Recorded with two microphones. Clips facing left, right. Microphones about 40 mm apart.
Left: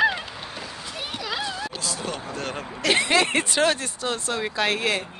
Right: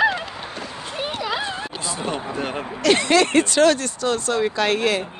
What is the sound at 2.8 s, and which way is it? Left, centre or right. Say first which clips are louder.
Speech: right 4 dB; centre.